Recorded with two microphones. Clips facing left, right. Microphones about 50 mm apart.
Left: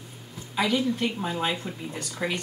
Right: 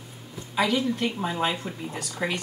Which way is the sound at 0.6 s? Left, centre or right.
Centre.